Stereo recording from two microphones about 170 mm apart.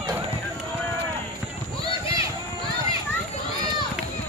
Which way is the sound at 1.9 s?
30° left (ahead or behind).